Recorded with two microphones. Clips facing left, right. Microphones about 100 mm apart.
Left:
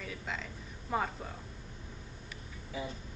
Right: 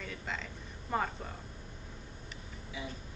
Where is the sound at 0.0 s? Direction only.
Centre (ahead or behind).